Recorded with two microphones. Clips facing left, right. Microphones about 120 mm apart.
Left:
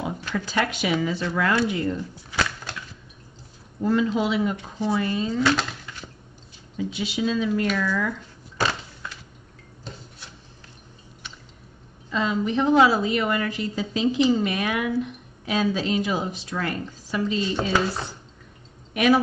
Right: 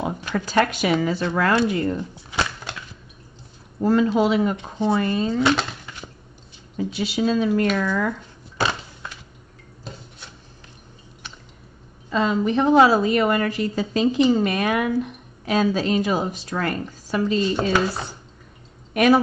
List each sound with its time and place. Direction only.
0.3 s speech: 40° right (ahead or behind)
2.1 s a sound: 20° right (ahead or behind)
3.8 s speech: 45° right (ahead or behind)
5.4 s a sound: 20° right (ahead or behind)
6.8 s speech: 40° right (ahead or behind)
12.1 s speech: 50° right (ahead or behind)